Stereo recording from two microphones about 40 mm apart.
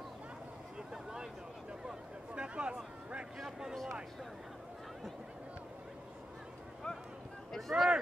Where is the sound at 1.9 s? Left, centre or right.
Right.